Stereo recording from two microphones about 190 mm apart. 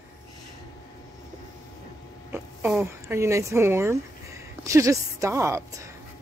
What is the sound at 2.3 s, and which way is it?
Zipper, 10° right (ahead or behind).